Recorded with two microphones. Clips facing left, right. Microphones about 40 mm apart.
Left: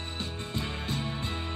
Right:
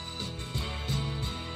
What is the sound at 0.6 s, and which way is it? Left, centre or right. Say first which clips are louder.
Music: left 1 dB; left.